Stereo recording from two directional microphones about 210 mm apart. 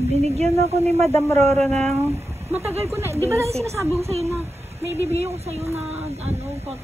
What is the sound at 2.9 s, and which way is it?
Speech, 15° right (ahead or behind).